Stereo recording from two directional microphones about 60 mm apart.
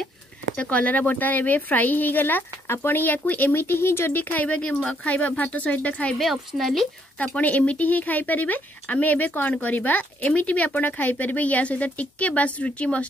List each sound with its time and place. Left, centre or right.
0.6 s speech: left
6.1 s speech: centre
7.2 s speech: left